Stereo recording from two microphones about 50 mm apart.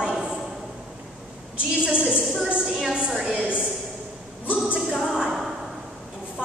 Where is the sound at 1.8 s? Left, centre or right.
Centre.